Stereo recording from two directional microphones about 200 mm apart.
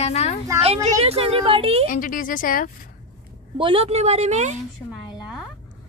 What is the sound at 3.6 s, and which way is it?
A woman's voice, 25° right (ahead or behind).